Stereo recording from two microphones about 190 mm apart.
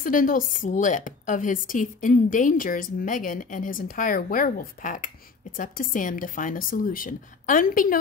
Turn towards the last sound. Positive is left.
turn(degrees=45)  # may be behind; listen again after turning